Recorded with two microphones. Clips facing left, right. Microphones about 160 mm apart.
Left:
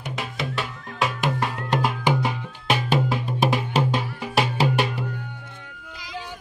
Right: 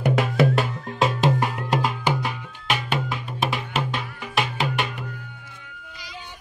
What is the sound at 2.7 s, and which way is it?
Music, 35° left (ahead or behind).